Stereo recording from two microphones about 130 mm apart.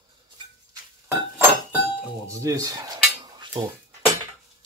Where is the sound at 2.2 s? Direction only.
25° right (ahead or behind).